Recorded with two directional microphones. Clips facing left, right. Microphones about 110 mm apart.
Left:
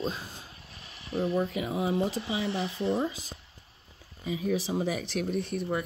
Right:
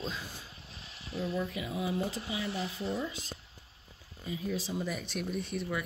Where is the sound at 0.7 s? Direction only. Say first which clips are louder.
Left 7 dB; 55° left (ahead or behind).